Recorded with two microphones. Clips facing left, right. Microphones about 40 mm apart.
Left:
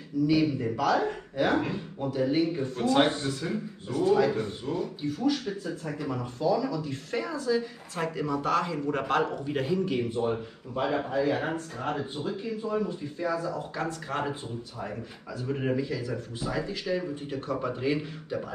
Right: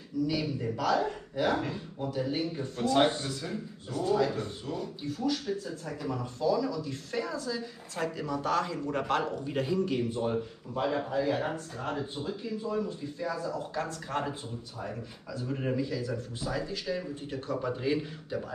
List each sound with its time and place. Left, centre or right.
0.3 s speech: centre
6.7 s a man's voice: left
13.6 s speech: centre
15.3 s speech: left